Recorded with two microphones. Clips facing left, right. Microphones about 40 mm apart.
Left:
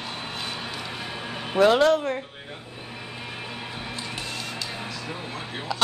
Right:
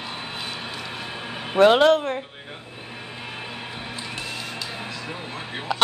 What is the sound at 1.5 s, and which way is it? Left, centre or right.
Speech, right.